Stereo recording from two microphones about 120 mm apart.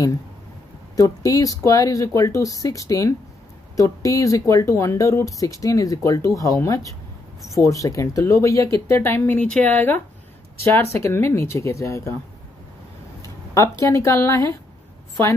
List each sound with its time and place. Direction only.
0.9 s speech: 30° left (ahead or behind)
13.6 s speech: 25° left (ahead or behind)